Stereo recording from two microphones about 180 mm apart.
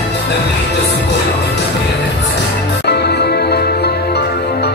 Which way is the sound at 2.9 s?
65° left (ahead or behind).